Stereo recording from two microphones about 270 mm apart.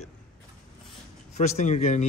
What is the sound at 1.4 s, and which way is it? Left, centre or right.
Speech, left.